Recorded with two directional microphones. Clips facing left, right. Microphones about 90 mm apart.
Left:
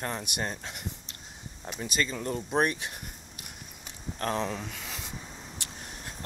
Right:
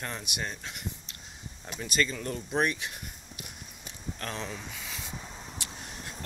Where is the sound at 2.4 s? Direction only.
40° left (ahead or behind).